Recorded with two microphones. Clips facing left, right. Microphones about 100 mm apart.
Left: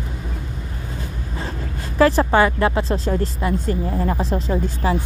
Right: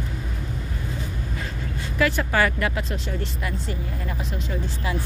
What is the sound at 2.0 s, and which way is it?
Speech, 35° left (ahead or behind).